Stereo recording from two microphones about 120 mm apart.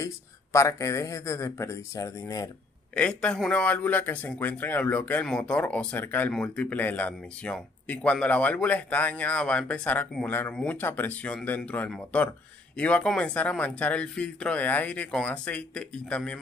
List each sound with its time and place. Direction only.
0.0 s speech: 25° left (ahead or behind)
3.0 s speech: 10° left (ahead or behind)